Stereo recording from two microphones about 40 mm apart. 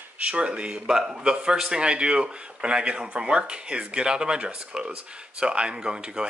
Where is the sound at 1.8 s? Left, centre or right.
Right.